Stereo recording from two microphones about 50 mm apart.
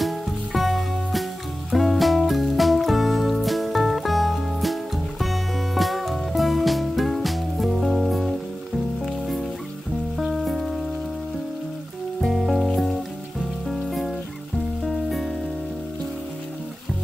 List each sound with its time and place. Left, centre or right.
0.0 s music: centre
12.2 s music: centre
13.7 s rain on surface: centre
14.8 s music: centre